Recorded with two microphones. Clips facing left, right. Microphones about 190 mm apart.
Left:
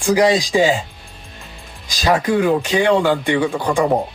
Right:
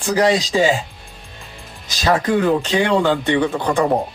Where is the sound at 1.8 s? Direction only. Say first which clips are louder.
Left 1 dB; 10° left (ahead or behind).